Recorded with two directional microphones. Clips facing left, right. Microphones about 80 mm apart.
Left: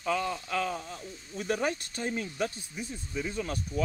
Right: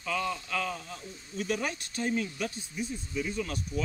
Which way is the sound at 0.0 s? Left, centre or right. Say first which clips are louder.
Left 2 dB; left.